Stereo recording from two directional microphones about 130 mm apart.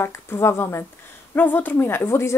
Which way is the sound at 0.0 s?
20° left (ahead or behind).